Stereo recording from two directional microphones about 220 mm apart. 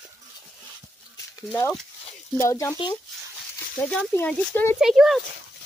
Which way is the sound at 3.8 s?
5° left (ahead or behind).